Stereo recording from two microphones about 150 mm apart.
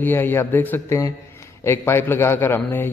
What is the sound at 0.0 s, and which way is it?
A man's voice, 15° left (ahead or behind).